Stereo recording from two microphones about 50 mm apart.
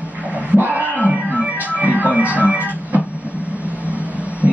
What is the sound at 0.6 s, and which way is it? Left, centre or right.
Organ, right.